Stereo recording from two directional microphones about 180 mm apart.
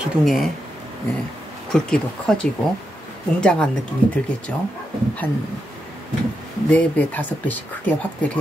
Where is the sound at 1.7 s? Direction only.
5° left (ahead or behind).